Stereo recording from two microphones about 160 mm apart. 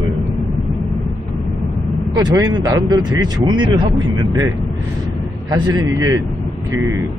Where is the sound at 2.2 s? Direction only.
25° right (ahead or behind).